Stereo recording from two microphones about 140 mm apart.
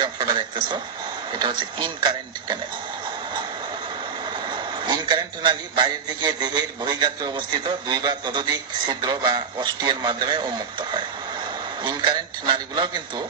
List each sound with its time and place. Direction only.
0.0 s a man's voice: 35° right (ahead or behind)
4.5 s a man's voice: 35° right (ahead or behind)